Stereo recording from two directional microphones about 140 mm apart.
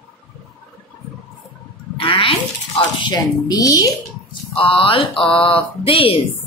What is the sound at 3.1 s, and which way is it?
Speech, 25° left (ahead or behind).